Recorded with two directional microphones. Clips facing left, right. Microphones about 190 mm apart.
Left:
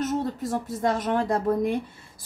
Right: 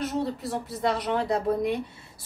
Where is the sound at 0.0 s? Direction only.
45° left (ahead or behind).